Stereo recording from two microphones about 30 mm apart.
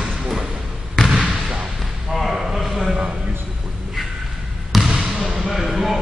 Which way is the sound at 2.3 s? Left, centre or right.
Centre.